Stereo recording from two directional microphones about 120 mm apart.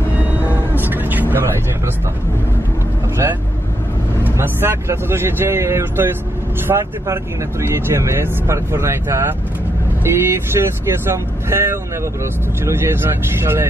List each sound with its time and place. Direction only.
0.7 s vehicle: 15° right (ahead or behind)
4.2 s speech: 20° right (ahead or behind)